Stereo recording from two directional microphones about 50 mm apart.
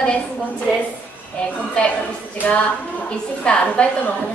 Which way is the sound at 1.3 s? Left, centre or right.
Left.